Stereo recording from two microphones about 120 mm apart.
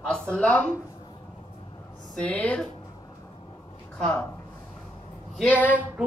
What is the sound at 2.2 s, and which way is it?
Speech, 10° left (ahead or behind).